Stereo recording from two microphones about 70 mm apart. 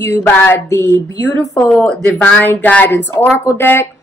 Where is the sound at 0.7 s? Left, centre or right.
Left.